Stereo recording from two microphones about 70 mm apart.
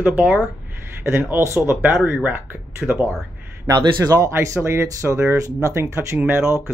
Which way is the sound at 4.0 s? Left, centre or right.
Right.